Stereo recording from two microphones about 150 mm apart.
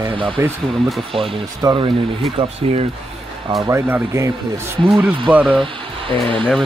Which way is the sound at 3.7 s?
15° right (ahead or behind).